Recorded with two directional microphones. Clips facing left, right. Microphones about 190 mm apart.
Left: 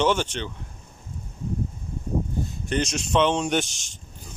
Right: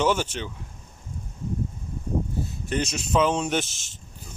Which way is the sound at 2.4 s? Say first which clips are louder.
Left 1 dB; 5° right (ahead or behind).